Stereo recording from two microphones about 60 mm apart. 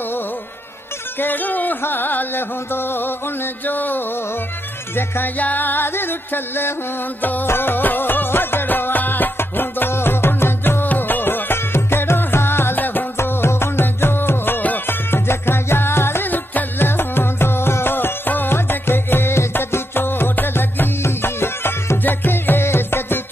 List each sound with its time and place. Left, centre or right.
1.2 s music: left
13.2 s music: left